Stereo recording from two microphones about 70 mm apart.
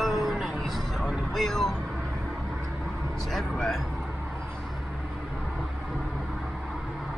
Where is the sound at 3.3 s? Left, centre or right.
Centre.